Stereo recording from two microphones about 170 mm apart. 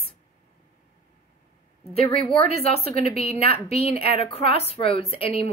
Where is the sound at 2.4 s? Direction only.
35° left (ahead or behind).